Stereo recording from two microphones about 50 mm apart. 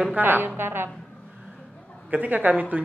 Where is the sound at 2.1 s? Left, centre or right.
Right.